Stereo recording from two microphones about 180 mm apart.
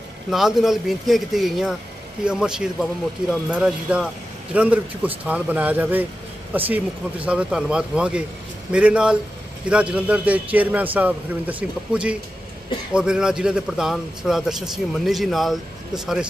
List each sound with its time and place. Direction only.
0.3 s a man's voice: centre (ahead or behind)